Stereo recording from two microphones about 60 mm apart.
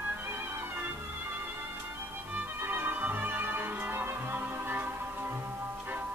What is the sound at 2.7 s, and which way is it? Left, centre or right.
Music, right.